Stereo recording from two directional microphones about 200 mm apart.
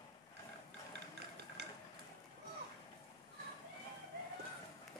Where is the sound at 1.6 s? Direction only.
55° right (ahead or behind).